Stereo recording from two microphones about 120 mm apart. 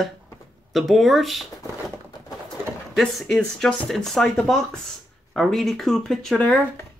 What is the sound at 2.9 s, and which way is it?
Speech, centre (ahead or behind).